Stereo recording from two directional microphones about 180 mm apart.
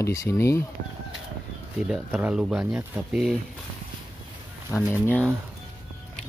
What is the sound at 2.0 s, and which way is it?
Speech, 5° right (ahead or behind).